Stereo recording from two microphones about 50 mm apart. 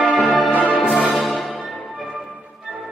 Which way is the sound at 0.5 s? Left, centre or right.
Left.